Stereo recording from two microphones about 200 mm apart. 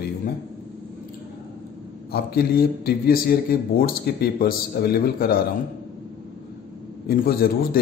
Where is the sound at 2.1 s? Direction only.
50° left (ahead or behind).